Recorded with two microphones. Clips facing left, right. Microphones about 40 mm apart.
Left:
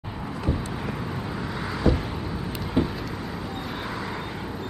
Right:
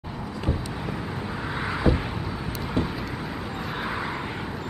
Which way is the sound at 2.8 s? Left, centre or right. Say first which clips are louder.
Left 3 dB; centre.